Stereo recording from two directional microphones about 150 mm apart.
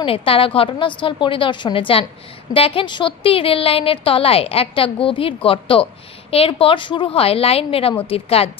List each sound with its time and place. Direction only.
0.0 s a woman's voice: 35° left (ahead or behind)